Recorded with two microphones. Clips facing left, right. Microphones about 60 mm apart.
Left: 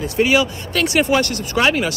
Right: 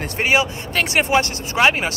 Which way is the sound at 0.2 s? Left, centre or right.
Right.